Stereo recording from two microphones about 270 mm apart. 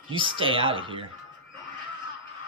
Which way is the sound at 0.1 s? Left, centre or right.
Centre.